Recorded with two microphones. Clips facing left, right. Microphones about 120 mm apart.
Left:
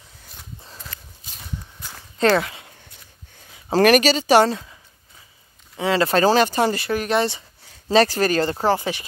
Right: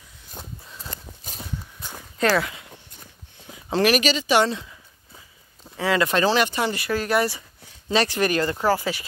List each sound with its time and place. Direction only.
2.3 s speech: 30° left (ahead or behind)
3.7 s speech: 50° left (ahead or behind)
4.0 s speech: 35° left (ahead or behind)
5.8 s speech: 30° left (ahead or behind)
6.9 s speech: 20° left (ahead or behind)
7.9 s speech: 35° left (ahead or behind)